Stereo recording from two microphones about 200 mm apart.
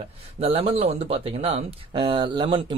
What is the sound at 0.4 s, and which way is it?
Speech, 30° right (ahead or behind).